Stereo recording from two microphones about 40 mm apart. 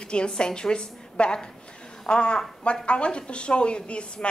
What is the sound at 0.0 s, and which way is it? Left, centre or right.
A woman's voice, left.